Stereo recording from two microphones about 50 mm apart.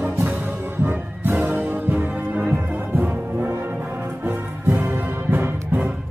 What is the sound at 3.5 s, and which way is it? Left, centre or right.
Music, right.